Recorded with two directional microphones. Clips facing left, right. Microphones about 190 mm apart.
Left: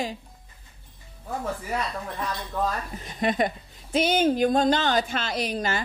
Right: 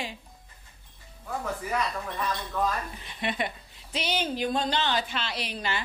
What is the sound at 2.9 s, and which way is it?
A woman's voice, 45° left (ahead or behind).